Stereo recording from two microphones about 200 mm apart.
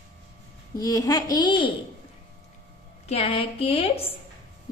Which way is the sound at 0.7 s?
15° left (ahead or behind).